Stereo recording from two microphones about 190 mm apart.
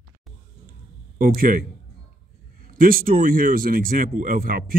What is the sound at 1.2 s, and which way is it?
Speech, 50° right (ahead or behind).